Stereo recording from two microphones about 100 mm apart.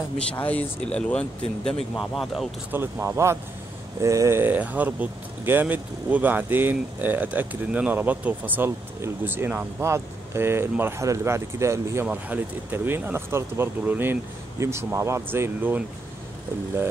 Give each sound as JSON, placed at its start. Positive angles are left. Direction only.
{"t": 0.3, "sound": "speech", "side_deg": 15}
{"t": 2.7, "sound": "speech", "side_deg": -25}
{"t": 4.4, "sound": "speech", "side_deg": -15}